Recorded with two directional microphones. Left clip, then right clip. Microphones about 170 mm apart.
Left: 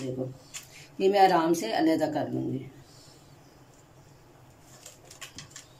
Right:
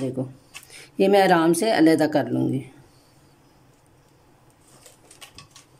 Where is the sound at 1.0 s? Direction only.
55° right (ahead or behind).